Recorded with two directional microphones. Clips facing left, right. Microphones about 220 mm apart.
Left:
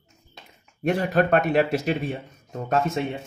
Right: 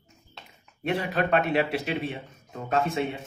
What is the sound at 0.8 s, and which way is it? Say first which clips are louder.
Speech: left 5 dB; 45° left (ahead or behind).